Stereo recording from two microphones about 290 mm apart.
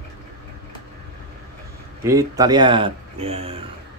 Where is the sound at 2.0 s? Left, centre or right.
Centre.